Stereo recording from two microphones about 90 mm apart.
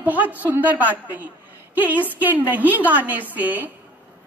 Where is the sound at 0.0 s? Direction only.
20° right (ahead or behind).